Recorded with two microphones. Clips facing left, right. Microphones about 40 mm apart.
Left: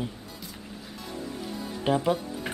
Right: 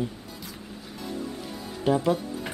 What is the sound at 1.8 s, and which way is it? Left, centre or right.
Speech, centre.